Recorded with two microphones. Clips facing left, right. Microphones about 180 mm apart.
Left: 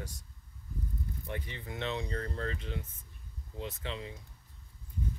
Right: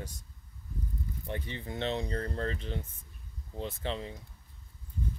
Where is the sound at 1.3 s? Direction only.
30° right (ahead or behind).